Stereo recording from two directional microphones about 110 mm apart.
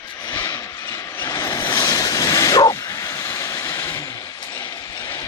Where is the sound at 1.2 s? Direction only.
25° left (ahead or behind).